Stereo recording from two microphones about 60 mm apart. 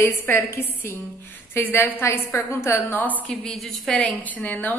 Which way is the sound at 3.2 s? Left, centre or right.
Centre.